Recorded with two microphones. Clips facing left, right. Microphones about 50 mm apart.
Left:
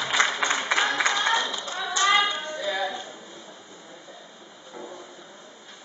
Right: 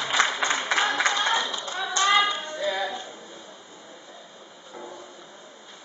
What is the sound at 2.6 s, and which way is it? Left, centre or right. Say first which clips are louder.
Music: right 1 dB; centre.